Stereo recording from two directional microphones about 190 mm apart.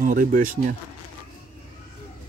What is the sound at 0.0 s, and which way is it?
Speech, 45° right (ahead or behind).